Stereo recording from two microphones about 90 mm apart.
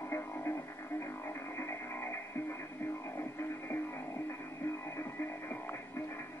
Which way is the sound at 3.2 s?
25° left (ahead or behind).